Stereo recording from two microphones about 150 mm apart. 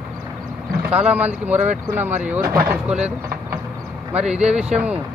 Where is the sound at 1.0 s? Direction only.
10° right (ahead or behind).